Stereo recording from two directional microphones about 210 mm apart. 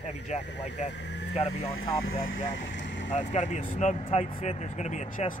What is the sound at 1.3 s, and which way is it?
Speech, 30° left (ahead or behind).